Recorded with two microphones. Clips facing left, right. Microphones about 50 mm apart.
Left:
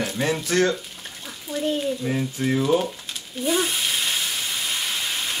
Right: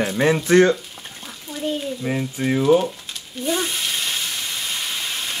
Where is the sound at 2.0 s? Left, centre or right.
Centre.